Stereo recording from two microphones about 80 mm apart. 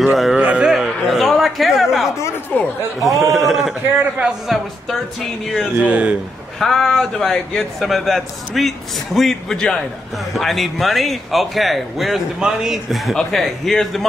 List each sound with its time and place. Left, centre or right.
0.0 s speech: centre
0.4 s a sound: centre
0.7 s a sound: centre
3.0 s a man's voice: centre
5.8 s a man's voice: centre
6.6 s a man's voice: centre